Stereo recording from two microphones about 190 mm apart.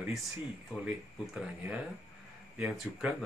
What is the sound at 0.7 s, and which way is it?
Speech, centre (ahead or behind).